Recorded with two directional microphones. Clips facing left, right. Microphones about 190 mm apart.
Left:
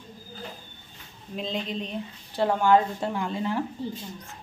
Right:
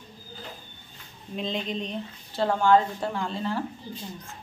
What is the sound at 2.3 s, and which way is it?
A woman's voice, 15° left (ahead or behind).